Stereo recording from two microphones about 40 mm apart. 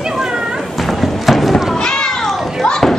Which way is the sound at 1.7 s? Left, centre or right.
Centre.